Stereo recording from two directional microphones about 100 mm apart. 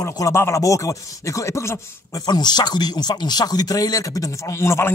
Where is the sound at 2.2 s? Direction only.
45° left (ahead or behind).